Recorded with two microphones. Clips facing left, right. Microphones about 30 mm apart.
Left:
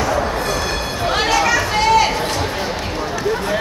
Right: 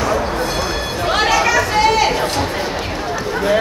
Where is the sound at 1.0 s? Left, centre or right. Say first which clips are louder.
Right 1 dB; centre.